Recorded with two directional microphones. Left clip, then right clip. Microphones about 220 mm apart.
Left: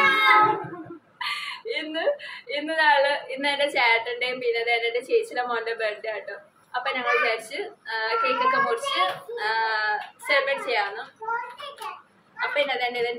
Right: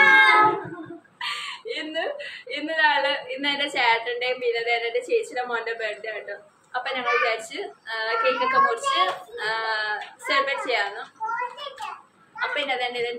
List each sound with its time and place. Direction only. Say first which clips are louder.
0.0 s a sound: right 5 dB; 10° right (ahead or behind)
1.2 s a woman's voice: left 1 dB; 10° left (ahead or behind)
12.4 s a woman's voice: left 1 dB; 15° left (ahead or behind)